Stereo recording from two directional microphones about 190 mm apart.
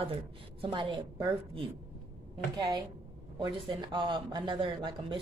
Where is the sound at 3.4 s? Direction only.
25° right (ahead or behind).